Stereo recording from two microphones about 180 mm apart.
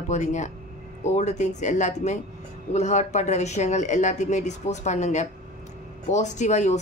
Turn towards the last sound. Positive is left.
turn(degrees=40)  # may be behind; listen again after turning